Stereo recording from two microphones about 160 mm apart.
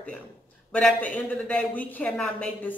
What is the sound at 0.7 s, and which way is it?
A woman's voice, 10° left (ahead or behind).